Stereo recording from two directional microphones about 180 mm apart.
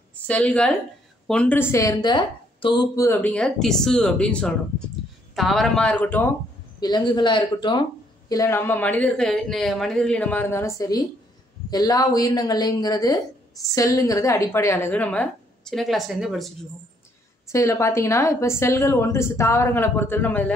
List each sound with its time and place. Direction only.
0.3 s a woman's voice: 5° left (ahead or behind); by 3.1 s 25° left (ahead or behind)
3.1 s speech: 10° left (ahead or behind)
6.8 s a woman's voice: 25° left (ahead or behind)
8.3 s a woman's voice: 15° left (ahead or behind); by 16.5 s centre (ahead or behind)
17.5 s a woman's voice: 15° left (ahead or behind)